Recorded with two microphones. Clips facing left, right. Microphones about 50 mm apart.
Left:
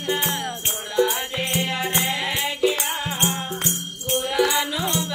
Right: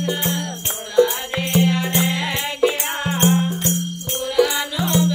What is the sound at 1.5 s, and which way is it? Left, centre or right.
Music, right.